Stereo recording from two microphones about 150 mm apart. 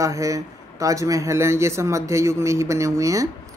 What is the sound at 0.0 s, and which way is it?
Speech, 20° right (ahead or behind).